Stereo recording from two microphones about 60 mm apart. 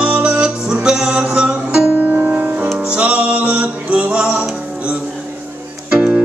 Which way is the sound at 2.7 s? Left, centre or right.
Centre.